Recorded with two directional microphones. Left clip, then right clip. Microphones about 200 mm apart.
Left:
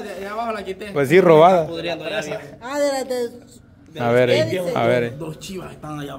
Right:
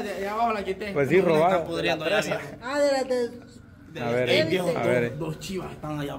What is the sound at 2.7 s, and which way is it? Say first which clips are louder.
A man's voice: left 2 dB; 40° left (ahead or behind).